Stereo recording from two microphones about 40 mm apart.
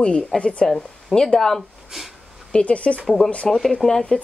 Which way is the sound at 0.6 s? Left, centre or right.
Centre.